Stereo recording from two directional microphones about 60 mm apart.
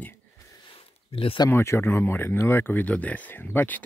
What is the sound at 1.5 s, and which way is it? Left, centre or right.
Speech, left.